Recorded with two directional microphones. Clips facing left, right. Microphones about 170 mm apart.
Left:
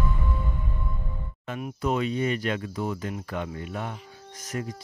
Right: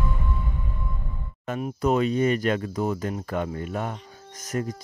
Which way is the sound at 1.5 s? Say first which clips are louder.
Right 4 dB; 35° right (ahead or behind).